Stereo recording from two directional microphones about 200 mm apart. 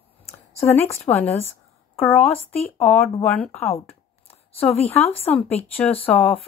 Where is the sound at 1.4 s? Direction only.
30° left (ahead or behind).